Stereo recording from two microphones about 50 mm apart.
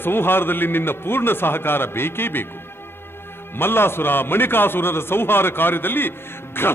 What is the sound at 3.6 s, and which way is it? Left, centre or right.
A man's voice, left.